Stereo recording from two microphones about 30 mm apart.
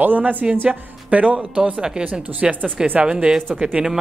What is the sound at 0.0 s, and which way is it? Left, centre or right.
Speech, right.